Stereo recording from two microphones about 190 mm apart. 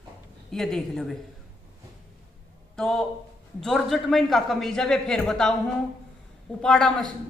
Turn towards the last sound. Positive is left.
turn(degrees=5)  # may be behind; listen again after turning